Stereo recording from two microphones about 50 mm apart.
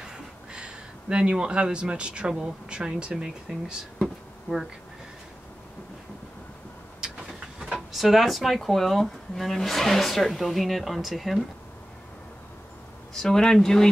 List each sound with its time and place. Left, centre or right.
0.0 s speech: centre
7.0 s vehicle: centre
7.9 s speech: centre
13.1 s speech: centre